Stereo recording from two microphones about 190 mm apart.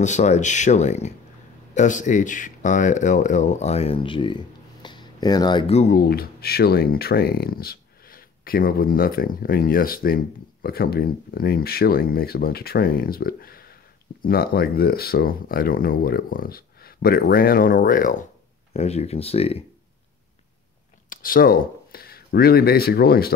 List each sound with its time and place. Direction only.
0.0 s speech: 40° left (ahead or behind)
18.7 s speech: 35° left (ahead or behind)
21.1 s speech: 50° left (ahead or behind)